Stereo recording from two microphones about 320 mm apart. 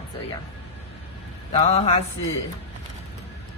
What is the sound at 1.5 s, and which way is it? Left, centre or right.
Speech, centre.